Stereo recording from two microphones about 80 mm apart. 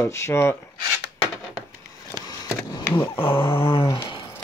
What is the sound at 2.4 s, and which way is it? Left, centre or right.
Speech, left.